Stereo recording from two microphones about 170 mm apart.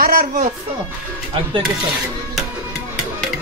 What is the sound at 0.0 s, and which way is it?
Speech, 55° right (ahead or behind).